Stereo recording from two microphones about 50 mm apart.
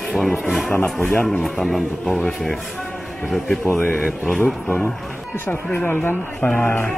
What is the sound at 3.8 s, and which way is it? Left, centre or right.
Speech, left.